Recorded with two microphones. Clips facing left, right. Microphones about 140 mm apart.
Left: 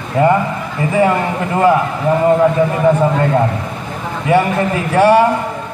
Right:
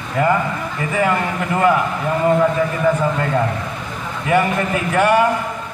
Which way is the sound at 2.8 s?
30° left (ahead or behind).